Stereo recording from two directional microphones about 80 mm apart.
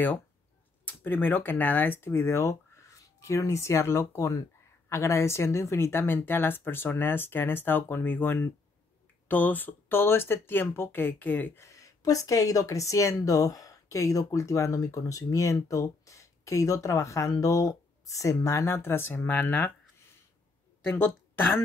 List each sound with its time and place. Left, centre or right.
0.8 s speech: left
11.5 s speech: left
20.9 s speech: left